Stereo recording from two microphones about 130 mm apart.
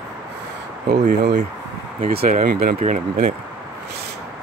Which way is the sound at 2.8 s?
65° right (ahead or behind).